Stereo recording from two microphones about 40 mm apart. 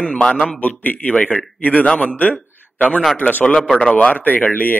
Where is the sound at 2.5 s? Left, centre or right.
Left.